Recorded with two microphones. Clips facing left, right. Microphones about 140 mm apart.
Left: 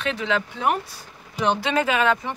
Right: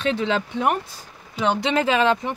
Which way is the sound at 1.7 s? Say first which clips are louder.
Right 3 dB; 30° right (ahead or behind).